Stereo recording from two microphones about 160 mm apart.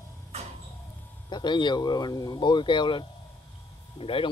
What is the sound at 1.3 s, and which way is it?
A man's voice, 30° left (ahead or behind).